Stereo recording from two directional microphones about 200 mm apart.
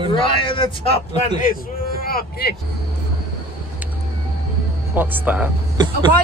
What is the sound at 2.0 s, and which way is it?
Speech, 50° left (ahead or behind).